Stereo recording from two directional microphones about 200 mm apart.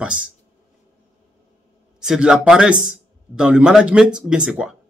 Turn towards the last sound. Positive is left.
turn(degrees=-5)  # may be behind; listen again after turning